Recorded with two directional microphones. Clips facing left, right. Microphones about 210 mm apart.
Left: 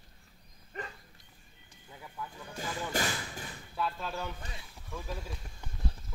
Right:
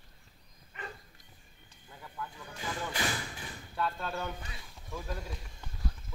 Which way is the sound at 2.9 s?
45° left (ahead or behind).